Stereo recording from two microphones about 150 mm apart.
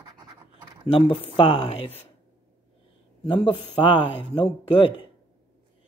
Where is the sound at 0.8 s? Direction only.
40° left (ahead or behind).